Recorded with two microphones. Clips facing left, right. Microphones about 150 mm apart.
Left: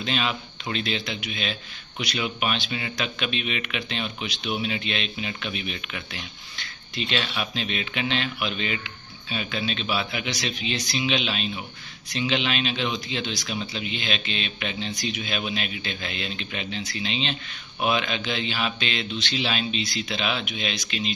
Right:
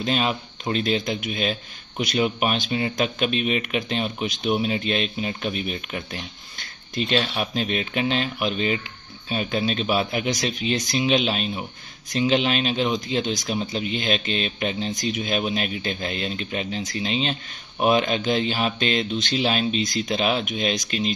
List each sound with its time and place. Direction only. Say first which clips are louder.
0.0 s speech: right 4 dB; 40° right (ahead or behind)